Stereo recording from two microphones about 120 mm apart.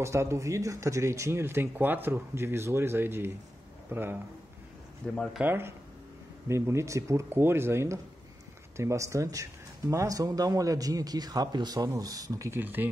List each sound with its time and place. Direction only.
0.0 s a man's voice: 25° right (ahead or behind)
5.0 s speech: 10° left (ahead or behind)
5.4 s speech: 20° right (ahead or behind)